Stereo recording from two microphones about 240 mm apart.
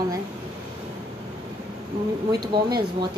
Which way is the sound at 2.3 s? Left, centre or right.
Centre.